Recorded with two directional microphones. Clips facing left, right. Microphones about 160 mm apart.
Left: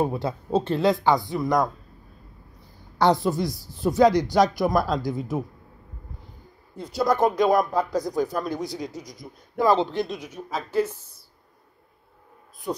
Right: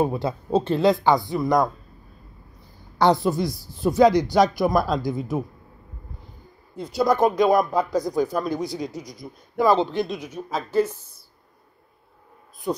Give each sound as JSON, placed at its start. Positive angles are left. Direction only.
{"t": 0.0, "sound": "speech", "side_deg": -20}
{"t": 3.0, "sound": "a woman's voice", "side_deg": -15}
{"t": 6.9, "sound": "a woman's voice", "side_deg": -15}
{"t": 9.7, "sound": "a woman's voice", "side_deg": -10}
{"t": 10.0, "sound": "speech", "side_deg": -20}